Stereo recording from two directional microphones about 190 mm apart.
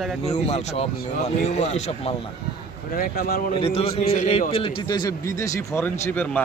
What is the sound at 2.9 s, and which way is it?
Speech, 50° left (ahead or behind).